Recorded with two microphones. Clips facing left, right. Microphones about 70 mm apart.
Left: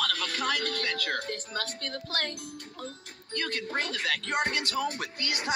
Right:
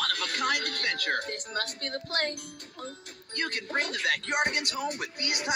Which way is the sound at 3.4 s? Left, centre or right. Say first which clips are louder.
Right 1 dB; right.